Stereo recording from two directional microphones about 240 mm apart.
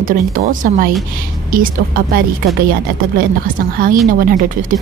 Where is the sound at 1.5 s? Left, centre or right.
Right.